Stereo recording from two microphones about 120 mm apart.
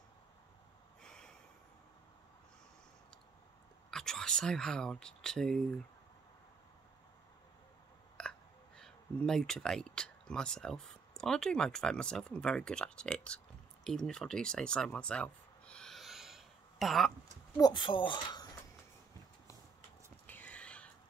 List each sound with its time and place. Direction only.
1.0 s snort: 5° left (ahead or behind)
3.9 s speech: 5° left (ahead or behind)
8.2 s speech: 5° left (ahead or behind)
13.8 s a sound: 5° left (ahead or behind)
17.6 s speech: 35° left (ahead or behind)
20.2 s a sound: 15° left (ahead or behind)